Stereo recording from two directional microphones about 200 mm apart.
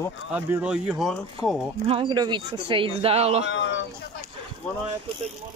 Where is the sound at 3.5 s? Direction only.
60° left (ahead or behind).